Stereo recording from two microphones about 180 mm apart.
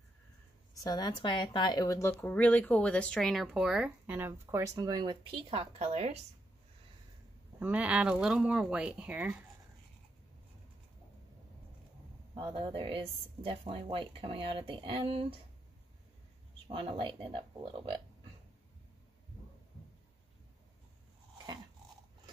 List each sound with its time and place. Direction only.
0.7 s speech: 20° left (ahead or behind); by 6.1 s 35° right (ahead or behind)
7.5 s speech: 10° right (ahead or behind)
12.4 s speech: 30° right (ahead or behind)
16.6 s speech: 30° right (ahead or behind)